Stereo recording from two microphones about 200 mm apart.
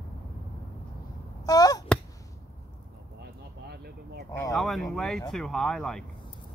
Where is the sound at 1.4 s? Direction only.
20° left (ahead or behind).